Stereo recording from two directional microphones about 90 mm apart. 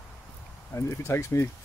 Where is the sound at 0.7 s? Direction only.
35° left (ahead or behind).